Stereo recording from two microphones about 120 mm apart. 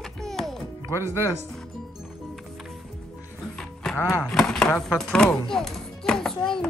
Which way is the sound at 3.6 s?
5° left (ahead or behind).